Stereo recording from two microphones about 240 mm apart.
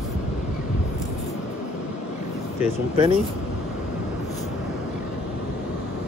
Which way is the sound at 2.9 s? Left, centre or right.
Right.